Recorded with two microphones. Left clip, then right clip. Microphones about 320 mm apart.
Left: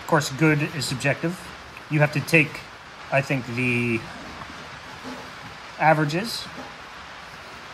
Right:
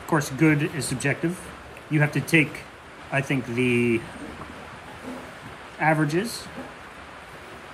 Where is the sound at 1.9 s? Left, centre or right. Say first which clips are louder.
Left 2 dB; centre.